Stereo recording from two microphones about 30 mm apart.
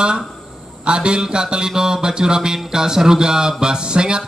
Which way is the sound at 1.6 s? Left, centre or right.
Centre.